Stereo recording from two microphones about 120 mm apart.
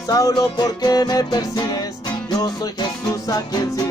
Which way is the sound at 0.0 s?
30° left (ahead or behind).